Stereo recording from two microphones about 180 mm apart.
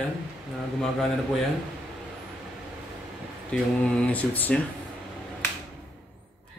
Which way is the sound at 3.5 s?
5° left (ahead or behind).